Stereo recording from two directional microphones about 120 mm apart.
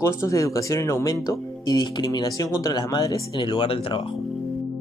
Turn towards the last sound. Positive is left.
turn(degrees=50)  # may be behind; listen again after turning